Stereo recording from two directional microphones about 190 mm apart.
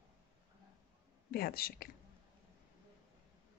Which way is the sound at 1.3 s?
50° left (ahead or behind).